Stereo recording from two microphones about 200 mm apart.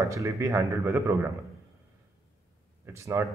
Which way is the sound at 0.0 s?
15° right (ahead or behind).